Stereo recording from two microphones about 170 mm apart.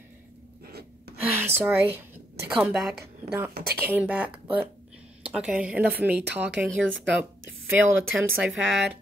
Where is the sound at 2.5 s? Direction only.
5° right (ahead or behind).